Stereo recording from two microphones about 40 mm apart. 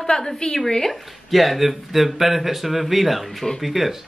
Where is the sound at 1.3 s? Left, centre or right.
Centre.